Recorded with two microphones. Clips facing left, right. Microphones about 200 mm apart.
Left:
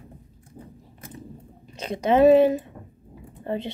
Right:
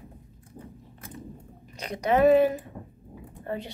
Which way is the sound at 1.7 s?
25° left (ahead or behind).